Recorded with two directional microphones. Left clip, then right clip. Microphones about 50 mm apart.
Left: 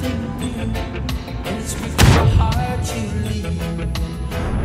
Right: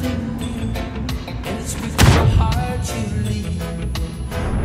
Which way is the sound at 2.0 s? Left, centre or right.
Centre.